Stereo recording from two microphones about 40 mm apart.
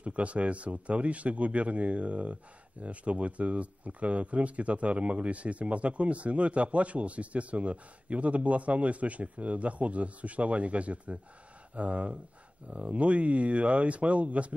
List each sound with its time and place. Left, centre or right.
0.0 s speech: right